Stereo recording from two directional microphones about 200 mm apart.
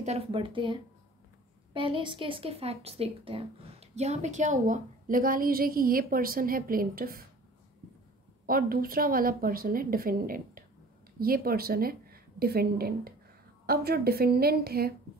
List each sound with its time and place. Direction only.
0.0 s a woman's voice: 30° right (ahead or behind); by 7.2 s 45° right (ahead or behind)
8.5 s a woman's voice: 45° right (ahead or behind)